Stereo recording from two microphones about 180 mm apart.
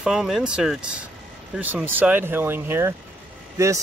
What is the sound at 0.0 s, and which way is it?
Speech, 5° right (ahead or behind).